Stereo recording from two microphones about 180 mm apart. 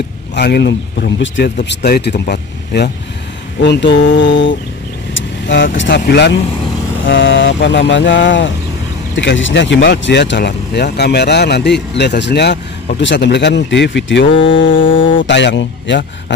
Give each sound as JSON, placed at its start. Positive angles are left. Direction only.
{"t": 0.4, "sound": "speech", "side_deg": 70}
{"t": 7.1, "sound": "speech", "side_deg": 90}